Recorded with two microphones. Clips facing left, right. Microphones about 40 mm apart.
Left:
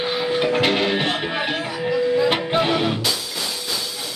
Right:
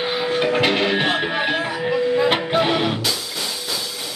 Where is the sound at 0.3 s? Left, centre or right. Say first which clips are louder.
Right 1 dB; centre; by 2.3 s right.